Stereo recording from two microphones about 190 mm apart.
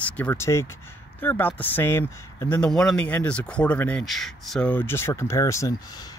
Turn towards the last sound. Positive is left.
turn(degrees=15)  # may be behind; listen again after turning